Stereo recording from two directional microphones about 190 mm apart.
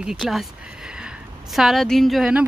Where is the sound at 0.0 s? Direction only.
Centre (ahead or behind).